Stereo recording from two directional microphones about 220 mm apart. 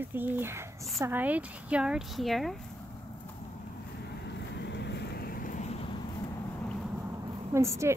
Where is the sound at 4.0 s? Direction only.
50° left (ahead or behind); by 6.0 s 25° left (ahead or behind).